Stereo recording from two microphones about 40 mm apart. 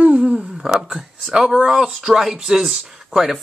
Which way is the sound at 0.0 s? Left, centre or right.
Right.